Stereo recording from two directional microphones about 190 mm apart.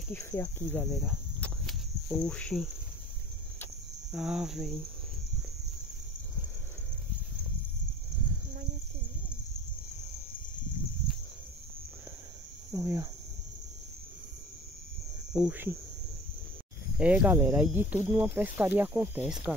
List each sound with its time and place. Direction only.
0.1 s speech: 15° left (ahead or behind)
1.0 s insect: centre (ahead or behind)
4.1 s cricket: 5° right (ahead or behind)
12.7 s speech: 15° right (ahead or behind)
15.3 s speech: 5° right (ahead or behind)
17.0 s speech: 5° right (ahead or behind)